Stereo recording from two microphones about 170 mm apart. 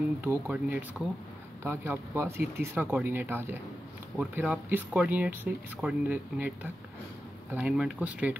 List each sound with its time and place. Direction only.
0.2 s speech: 10° right (ahead or behind)